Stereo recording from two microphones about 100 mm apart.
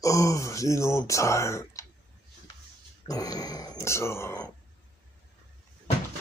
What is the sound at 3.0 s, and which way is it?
Grunt, 40° left (ahead or behind).